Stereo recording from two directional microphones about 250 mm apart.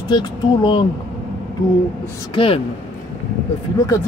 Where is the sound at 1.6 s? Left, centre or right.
Centre.